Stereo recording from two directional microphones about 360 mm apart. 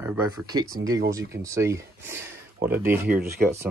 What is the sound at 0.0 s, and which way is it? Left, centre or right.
Speech, centre.